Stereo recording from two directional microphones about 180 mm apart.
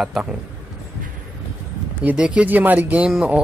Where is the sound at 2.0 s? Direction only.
5° right (ahead or behind).